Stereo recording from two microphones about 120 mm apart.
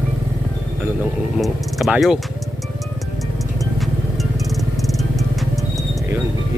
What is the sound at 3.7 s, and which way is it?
Music, centre (ahead or behind).